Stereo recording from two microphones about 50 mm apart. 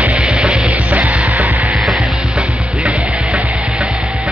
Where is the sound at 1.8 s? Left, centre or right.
Centre.